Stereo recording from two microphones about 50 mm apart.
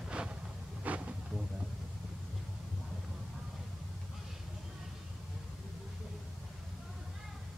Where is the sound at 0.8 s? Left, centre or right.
Right.